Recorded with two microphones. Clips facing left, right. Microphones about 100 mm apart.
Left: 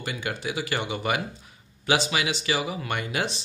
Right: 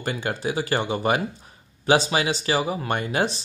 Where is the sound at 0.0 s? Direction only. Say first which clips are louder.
Right 4 dB; 35° right (ahead or behind).